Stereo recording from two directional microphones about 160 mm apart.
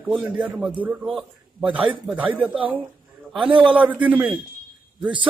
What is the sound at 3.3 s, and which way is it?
Speech, 30° right (ahead or behind).